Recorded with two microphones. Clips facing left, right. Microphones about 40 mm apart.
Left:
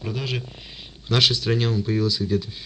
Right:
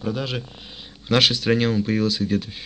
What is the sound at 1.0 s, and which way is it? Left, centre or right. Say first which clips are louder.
Speech: right 3 dB; right.